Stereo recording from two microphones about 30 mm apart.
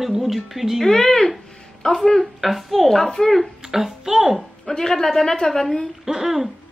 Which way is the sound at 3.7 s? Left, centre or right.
Centre.